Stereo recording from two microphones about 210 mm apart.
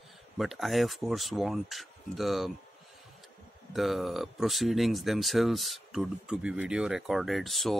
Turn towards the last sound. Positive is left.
turn(degrees=0)  # may be behind; listen again after turning